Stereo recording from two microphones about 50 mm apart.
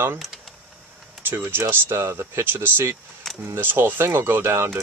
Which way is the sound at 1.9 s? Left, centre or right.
Right.